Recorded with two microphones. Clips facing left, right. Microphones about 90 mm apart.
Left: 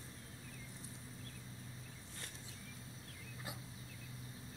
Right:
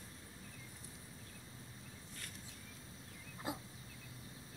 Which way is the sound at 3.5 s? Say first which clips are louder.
Right 8 dB; 30° right (ahead or behind).